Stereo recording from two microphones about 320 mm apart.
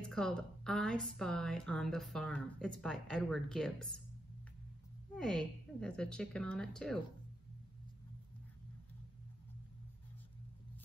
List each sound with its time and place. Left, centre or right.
0.1 s speech: centre
5.1 s speech: centre